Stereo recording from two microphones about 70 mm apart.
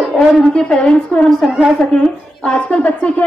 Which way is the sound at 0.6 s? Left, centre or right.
Centre.